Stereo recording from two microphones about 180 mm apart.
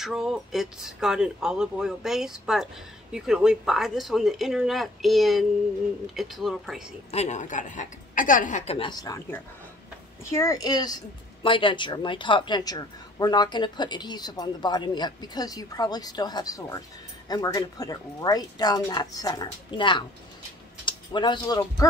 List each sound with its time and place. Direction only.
0.0 s speech: centre (ahead or behind)
7.1 s a woman's voice: 40° left (ahead or behind)
8.7 s a woman's voice: 25° left (ahead or behind)